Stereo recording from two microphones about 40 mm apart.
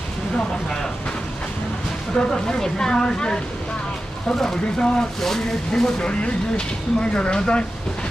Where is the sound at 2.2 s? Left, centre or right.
Centre.